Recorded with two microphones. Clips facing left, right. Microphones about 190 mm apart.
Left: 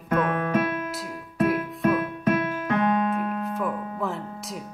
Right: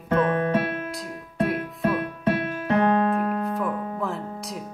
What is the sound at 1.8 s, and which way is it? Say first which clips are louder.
Music: left 1 dB; 30° right (ahead or behind).